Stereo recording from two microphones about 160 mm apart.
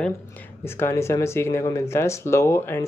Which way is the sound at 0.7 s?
15° left (ahead or behind).